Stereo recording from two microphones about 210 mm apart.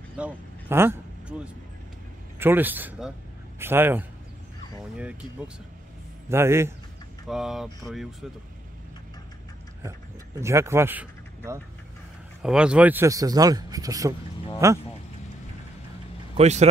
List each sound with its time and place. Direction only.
0.2 s speech: 10° right (ahead or behind)
2.3 s a man's voice: 10° right (ahead or behind)
6.2 s a man's voice: 10° right (ahead or behind)
7.2 s speech: centre (ahead or behind)
10.4 s speech: 15° right (ahead or behind)
16.3 s a man's voice: 30° right (ahead or behind)